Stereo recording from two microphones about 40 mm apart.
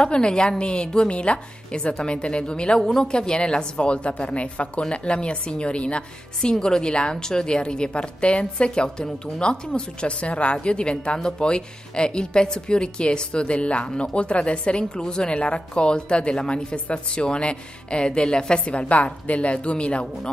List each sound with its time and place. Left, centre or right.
0.0 s speech: left
2.8 s speech: centre; by 6.5 s left
6.5 s speech: centre